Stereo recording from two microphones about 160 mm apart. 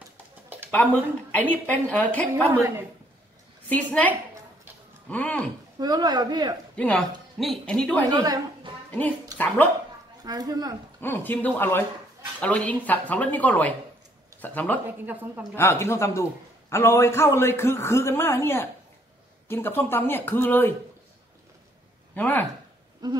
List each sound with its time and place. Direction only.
1.3 s a man's voice: 10° left (ahead or behind)
3.6 s a woman's voice: 10° left (ahead or behind)
5.8 s a woman's voice: 25° right (ahead or behind)
6.8 s a man's voice: 10° left (ahead or behind)
8.1 s a woman's voice: 30° right (ahead or behind)
8.9 s speech: 10° left (ahead or behind)
10.2 s a woman's voice: 25° right (ahead or behind)
11.0 s a man's voice: 10° left (ahead or behind)
14.9 s speech: 10° right (ahead or behind)
15.5 s a man's voice: 15° left (ahead or behind)
22.1 s speech: 10° left (ahead or behind)